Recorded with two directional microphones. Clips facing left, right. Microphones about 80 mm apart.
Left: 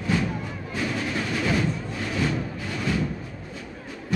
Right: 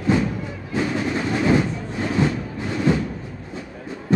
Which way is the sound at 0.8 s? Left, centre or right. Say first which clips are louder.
Right 6 dB; right.